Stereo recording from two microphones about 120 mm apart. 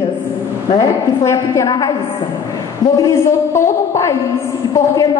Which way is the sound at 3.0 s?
25° left (ahead or behind).